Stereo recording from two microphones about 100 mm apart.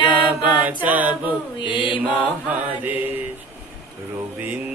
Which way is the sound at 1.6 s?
55° left (ahead or behind).